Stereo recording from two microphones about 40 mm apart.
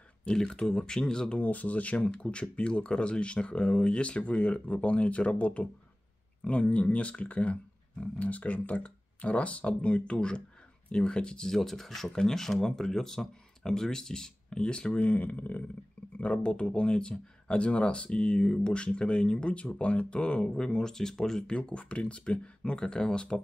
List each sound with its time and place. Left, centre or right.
0.3 s speech: centre
1.4 s speech: left
15.0 s speech: left
16.2 s speech: left; by 21.5 s centre
21.5 s speech: left